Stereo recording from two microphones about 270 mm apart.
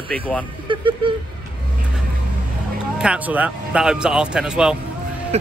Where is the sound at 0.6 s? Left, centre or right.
Centre.